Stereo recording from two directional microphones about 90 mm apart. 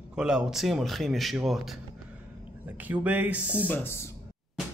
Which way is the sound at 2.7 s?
20° right (ahead or behind).